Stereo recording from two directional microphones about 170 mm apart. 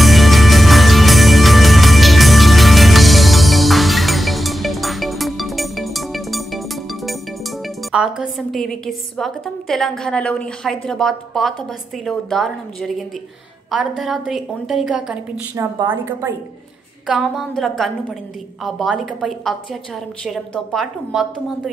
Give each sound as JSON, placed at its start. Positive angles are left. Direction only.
{"t": 0.0, "sound": "music", "side_deg": 0}
{"t": 7.6, "sound": "a woman's voice", "side_deg": -5}
{"t": 15.6, "sound": "a woman's voice", "side_deg": -15}